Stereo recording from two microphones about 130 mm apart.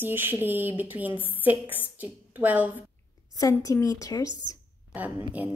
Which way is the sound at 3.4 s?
25° left (ahead or behind).